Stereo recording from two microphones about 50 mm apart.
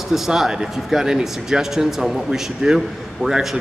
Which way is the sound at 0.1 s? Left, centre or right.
Centre.